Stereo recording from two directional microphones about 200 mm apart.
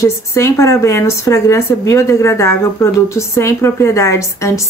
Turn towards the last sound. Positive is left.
turn(degrees=15)  # may be behind; listen again after turning